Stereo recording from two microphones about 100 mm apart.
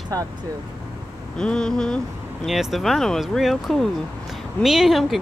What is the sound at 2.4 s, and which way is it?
Speech, centre (ahead or behind).